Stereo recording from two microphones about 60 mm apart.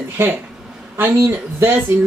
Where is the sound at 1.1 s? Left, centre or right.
Right.